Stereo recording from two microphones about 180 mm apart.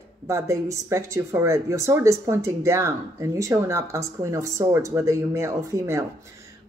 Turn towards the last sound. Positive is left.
turn(degrees=-15)  # may be behind; listen again after turning